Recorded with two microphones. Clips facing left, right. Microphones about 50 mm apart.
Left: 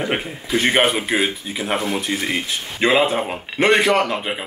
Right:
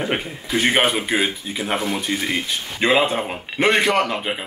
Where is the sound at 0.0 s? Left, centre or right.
Centre.